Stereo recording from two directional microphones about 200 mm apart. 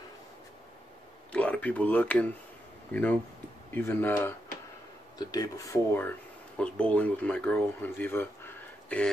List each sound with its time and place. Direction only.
1.3 s speech: 5° left (ahead or behind)